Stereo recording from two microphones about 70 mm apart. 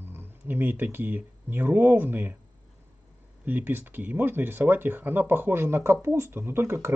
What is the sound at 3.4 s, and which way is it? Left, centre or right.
Speech, right.